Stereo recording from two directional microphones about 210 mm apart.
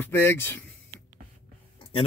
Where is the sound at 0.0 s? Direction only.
10° left (ahead or behind).